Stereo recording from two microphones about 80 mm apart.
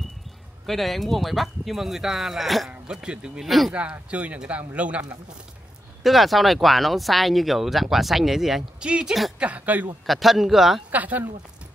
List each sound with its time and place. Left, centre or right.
0.7 s speech: centre
2.7 s speech: centre
3.4 s speech: centre
3.7 s speech: centre
6.0 s speech: centre
10.0 s speech: centre
10.9 s speech: centre